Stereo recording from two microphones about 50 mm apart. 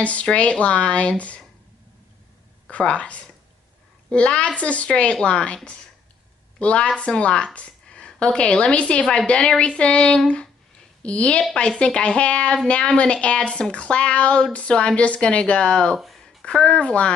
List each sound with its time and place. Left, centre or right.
0.0 s speech: left
2.8 s speech: left
6.6 s speech: left
16.0 s a sound: centre
16.4 s speech: left